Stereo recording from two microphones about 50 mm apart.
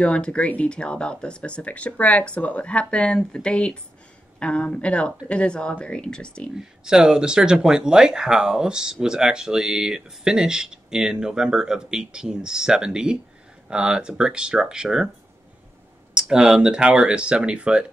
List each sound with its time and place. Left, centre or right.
0.0 s speech: left
6.8 s speech: centre
16.2 s speech: centre